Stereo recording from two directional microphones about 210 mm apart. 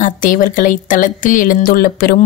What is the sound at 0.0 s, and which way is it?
Speech, 40° left (ahead or behind).